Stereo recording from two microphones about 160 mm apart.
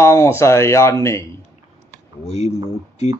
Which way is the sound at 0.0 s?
15° left (ahead or behind).